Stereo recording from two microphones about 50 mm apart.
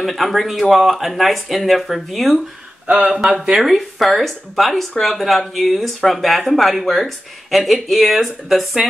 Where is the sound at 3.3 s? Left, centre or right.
Centre.